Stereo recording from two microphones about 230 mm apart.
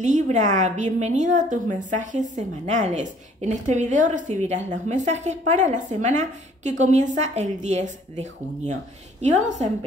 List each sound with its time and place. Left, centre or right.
0.0 s a woman's voice: right